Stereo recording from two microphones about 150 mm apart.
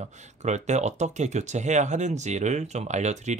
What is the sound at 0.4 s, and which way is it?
Speech, 50° right (ahead or behind).